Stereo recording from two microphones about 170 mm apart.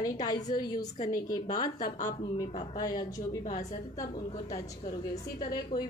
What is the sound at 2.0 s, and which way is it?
Speech, 20° left (ahead or behind).